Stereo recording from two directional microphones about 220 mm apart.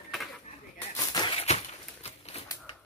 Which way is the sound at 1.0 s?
20° left (ahead or behind).